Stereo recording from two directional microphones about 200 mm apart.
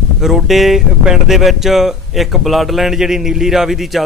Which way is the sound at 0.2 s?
Centre (ahead or behind).